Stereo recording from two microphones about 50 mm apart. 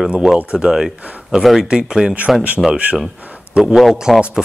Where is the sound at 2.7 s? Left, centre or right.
Right.